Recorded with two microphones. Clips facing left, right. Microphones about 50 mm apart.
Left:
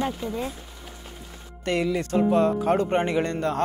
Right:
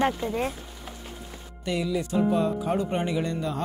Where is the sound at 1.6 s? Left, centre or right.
Left.